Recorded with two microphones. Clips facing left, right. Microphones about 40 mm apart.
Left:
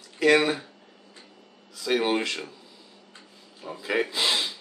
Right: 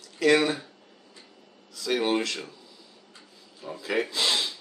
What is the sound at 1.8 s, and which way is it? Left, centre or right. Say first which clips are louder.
Speech: left 1 dB; centre.